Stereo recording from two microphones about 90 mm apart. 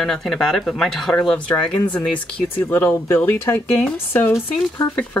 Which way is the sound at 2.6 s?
25° left (ahead or behind).